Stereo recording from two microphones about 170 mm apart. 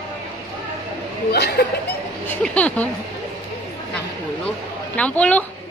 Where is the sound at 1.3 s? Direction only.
70° left (ahead or behind).